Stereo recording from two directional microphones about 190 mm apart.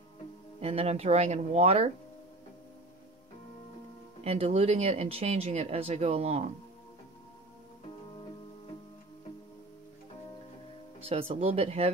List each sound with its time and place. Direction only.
0.6 s speech: 30° right (ahead or behind)
4.2 s speech: 30° right (ahead or behind)
11.0 s speech: 30° right (ahead or behind)